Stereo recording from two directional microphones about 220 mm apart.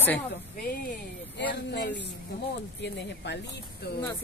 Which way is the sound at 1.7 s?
50° left (ahead or behind).